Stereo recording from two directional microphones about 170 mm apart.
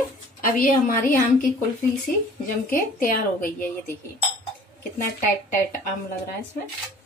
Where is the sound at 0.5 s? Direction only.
55° left (ahead or behind).